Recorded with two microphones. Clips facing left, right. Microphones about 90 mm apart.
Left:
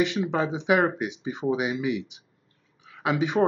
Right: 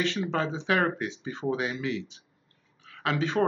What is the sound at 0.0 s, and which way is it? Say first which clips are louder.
Speech: left 4 dB; 15° left (ahead or behind).